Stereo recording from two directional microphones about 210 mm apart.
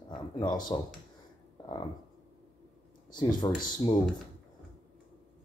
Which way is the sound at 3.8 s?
30° left (ahead or behind).